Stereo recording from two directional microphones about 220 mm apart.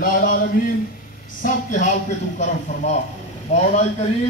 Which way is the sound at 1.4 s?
35° left (ahead or behind).